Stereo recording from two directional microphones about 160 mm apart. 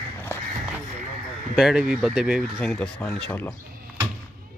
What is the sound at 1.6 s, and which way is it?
Speech, 5° right (ahead or behind).